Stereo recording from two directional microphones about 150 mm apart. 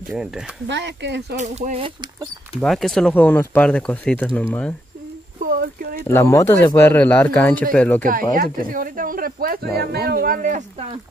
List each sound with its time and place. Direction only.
0.1 s speech: 5° right (ahead or behind)
1.3 s speech: 50° right (ahead or behind)
2.6 s speech: centre (ahead or behind)
5.4 s speech: 85° right
6.0 s speech: 20° left (ahead or behind)
8.0 s speech: 70° right (ahead or behind)